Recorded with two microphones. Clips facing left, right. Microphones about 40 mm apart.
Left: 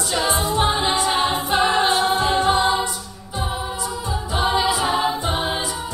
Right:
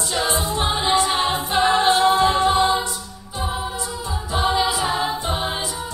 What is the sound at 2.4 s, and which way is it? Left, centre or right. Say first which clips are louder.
Choir: even; left.